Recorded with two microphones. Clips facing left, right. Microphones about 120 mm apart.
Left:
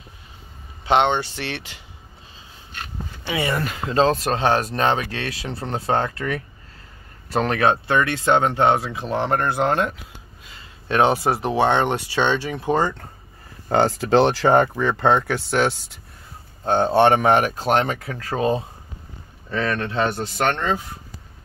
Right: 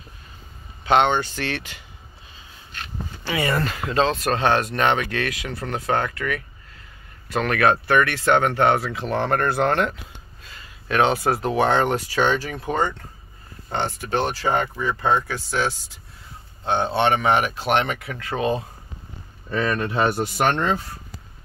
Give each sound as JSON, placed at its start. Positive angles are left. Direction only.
{"t": 0.8, "sound": "speech", "side_deg": 25}
{"t": 3.3, "sound": "speech", "side_deg": 25}
{"t": 3.5, "sound": "speech", "side_deg": 10}
{"t": 3.8, "sound": "speech", "side_deg": 35}
{"t": 13.7, "sound": "speech", "side_deg": 90}
{"t": 16.6, "sound": "speech", "side_deg": 45}
{"t": 19.5, "sound": "speech", "side_deg": -10}